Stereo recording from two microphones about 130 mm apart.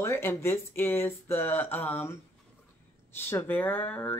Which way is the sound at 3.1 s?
15° left (ahead or behind).